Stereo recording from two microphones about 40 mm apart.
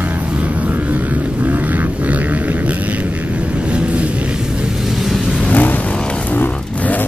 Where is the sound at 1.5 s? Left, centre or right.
Right.